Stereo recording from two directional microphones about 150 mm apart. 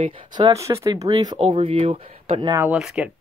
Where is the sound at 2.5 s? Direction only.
15° right (ahead or behind).